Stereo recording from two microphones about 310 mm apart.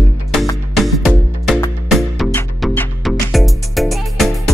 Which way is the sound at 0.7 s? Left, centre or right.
Centre.